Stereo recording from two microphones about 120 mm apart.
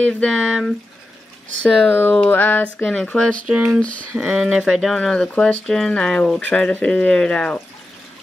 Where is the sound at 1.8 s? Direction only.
15° left (ahead or behind).